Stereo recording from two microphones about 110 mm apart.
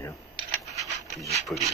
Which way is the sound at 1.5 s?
25° left (ahead or behind).